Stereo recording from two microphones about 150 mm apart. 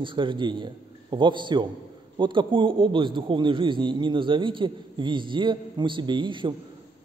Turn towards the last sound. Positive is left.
turn(degrees=-30)  # may be behind; listen again after turning